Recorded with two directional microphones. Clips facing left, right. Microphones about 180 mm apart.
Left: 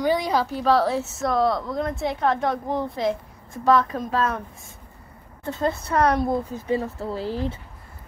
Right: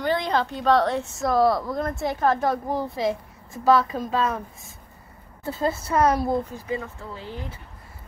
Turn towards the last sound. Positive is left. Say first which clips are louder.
# left 9 dB
turn(degrees=35)  # may be behind; listen again after turning